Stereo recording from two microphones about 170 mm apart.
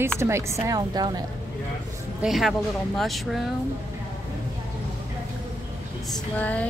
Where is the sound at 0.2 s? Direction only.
15° right (ahead or behind).